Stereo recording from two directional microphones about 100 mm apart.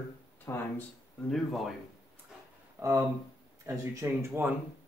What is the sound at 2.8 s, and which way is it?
Speech, 25° right (ahead or behind).